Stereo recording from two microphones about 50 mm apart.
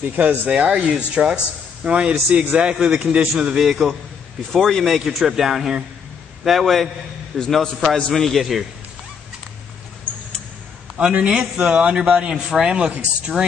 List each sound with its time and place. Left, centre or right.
0.0 s speech: right
0.5 s a man's voice: centre
3.5 s a man's voice: centre
4.5 s a man's voice: centre
4.9 s a man's voice: centre
11.0 s a man's voice: centre